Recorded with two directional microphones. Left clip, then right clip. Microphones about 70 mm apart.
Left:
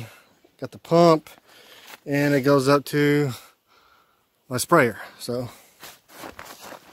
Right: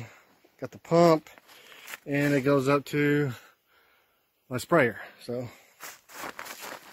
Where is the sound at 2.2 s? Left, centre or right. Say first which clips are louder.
Left 5 dB; left.